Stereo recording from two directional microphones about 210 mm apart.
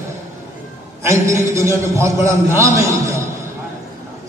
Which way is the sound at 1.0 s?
15° right (ahead or behind).